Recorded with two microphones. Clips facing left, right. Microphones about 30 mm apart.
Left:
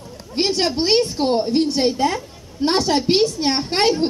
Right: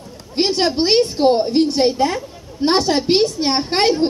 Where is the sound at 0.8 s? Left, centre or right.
Right.